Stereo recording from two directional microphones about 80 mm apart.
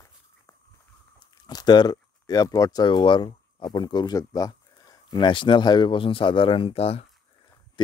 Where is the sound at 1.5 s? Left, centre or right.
Left.